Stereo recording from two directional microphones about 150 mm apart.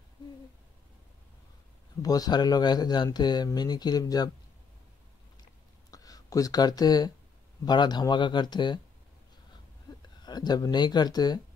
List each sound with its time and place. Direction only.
2.0 s speech: 25° left (ahead or behind)
5.9 s a sound: 25° left (ahead or behind)
7.6 s speech: 30° left (ahead or behind)
10.2 s speech: 30° left (ahead or behind)